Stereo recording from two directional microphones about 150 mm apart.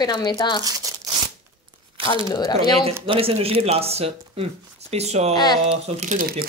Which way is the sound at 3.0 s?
40° right (ahead or behind).